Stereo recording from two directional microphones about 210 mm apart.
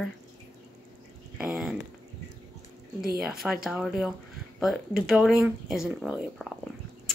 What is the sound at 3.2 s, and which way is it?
Speech, centre (ahead or behind).